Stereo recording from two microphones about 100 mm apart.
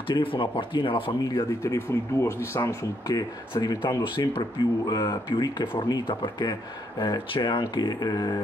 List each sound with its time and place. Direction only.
0.1 s speech: 60° left (ahead or behind)
1.2 s speech: 35° left (ahead or behind)
4.0 s speech: 50° left (ahead or behind)